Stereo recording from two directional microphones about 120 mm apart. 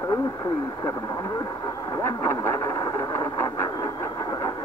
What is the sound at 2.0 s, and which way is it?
Radio, 20° left (ahead or behind).